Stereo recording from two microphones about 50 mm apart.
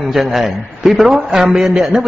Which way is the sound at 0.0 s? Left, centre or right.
Centre.